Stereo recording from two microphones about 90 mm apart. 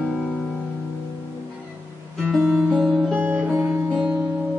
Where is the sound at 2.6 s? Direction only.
5° right (ahead or behind).